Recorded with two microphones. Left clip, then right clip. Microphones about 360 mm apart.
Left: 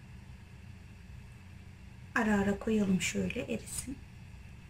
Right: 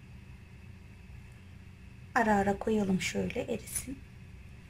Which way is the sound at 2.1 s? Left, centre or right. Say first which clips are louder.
Right 4 dB; centre.